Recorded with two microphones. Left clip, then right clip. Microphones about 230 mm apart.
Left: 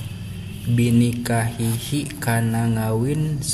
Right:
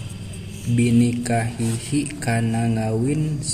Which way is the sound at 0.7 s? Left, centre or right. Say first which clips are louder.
Right 1 dB; centre.